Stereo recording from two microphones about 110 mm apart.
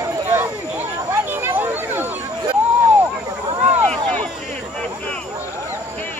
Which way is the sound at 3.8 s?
10° left (ahead or behind).